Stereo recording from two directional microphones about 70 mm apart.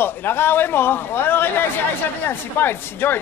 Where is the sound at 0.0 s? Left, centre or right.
Left.